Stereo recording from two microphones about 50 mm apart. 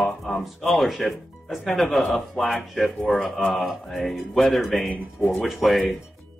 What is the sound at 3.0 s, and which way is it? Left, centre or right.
Speech, left.